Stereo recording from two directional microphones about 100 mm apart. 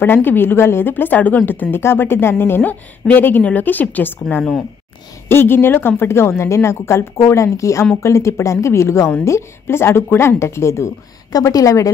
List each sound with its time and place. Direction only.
0.0 s a woman's voice: 20° left (ahead or behind)
4.4 s speech: centre (ahead or behind)
5.3 s a woman's voice: 20° left (ahead or behind)